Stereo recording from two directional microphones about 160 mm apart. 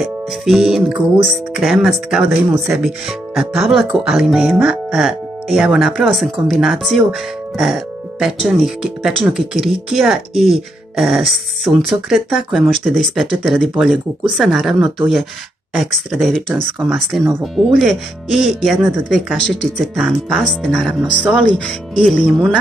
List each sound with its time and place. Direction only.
0.0 s music: centre (ahead or behind)
1.1 s speech: 5° right (ahead or behind)
21.9 s speech: 5° right (ahead or behind)